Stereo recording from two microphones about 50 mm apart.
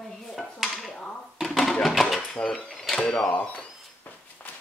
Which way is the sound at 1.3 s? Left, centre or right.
Centre.